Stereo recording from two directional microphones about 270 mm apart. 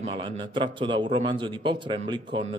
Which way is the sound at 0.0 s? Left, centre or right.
Centre.